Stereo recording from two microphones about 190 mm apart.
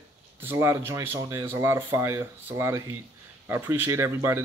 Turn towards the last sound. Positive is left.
turn(degrees=-15)  # may be behind; listen again after turning